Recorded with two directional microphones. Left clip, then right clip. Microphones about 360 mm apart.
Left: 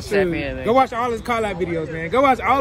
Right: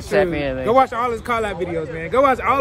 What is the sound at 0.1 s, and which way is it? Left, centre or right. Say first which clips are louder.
A man's voice: right 2 dB; centre.